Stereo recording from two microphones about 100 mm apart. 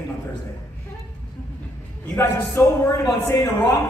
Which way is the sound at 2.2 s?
30° left (ahead or behind).